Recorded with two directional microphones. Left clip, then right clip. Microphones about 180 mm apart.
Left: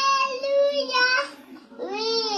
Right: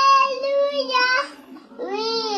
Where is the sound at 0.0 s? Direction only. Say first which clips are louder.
Right 6 dB; 25° right (ahead or behind).